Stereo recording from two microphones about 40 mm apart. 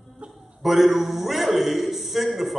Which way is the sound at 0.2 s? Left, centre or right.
Right.